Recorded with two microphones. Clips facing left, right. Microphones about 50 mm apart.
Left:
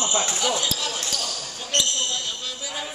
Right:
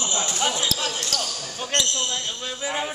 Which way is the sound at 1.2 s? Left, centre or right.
Right.